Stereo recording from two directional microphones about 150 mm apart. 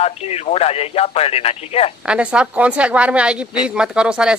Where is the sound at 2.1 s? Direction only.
5° right (ahead or behind).